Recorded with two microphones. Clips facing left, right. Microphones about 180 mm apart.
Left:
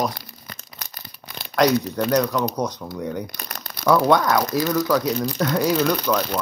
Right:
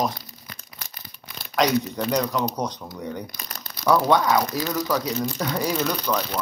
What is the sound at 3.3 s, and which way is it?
Crumpling, 55° left (ahead or behind).